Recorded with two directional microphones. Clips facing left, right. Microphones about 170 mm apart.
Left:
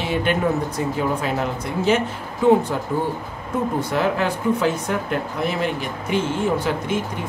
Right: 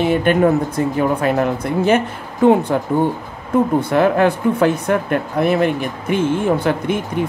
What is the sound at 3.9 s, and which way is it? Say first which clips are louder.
Speech: right 8 dB; 55° right (ahead or behind).